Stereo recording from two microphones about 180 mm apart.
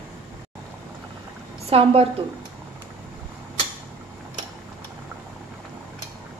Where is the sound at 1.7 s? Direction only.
30° right (ahead or behind).